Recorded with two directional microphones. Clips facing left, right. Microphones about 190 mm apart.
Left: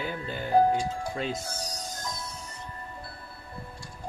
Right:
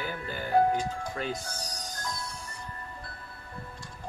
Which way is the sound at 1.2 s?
25° left (ahead or behind).